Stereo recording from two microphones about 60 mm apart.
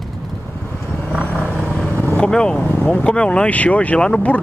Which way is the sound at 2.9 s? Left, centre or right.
Centre.